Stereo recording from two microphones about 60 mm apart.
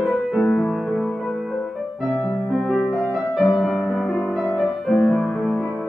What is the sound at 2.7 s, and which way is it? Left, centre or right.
Music, centre.